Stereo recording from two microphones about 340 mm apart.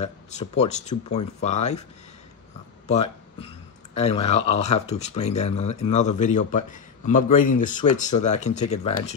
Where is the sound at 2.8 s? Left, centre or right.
Centre.